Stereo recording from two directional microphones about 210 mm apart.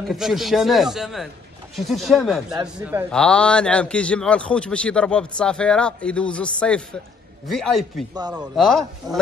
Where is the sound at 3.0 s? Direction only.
5° left (ahead or behind).